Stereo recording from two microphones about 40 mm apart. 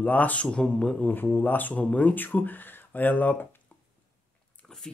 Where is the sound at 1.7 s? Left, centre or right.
Left.